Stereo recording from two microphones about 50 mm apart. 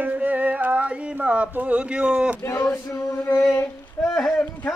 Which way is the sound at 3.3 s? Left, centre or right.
Left.